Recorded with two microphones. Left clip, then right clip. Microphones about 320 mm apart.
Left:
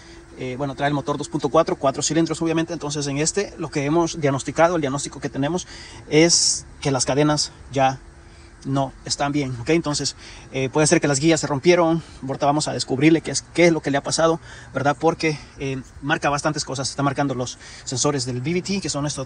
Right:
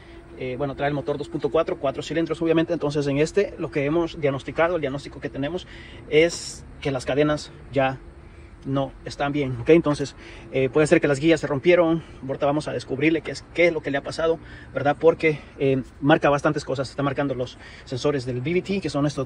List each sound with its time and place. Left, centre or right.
0.4 s speech: centre